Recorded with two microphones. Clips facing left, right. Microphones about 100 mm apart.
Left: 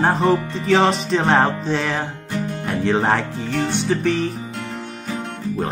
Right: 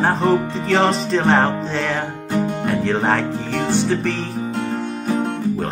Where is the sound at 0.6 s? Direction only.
Centre (ahead or behind).